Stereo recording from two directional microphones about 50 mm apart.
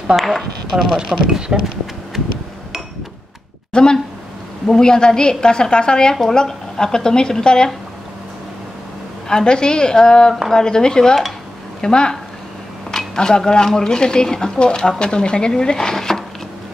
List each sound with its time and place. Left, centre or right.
0.1 s speech: centre
0.7 s speech: centre
3.7 s speech: centre
9.3 s speech: centre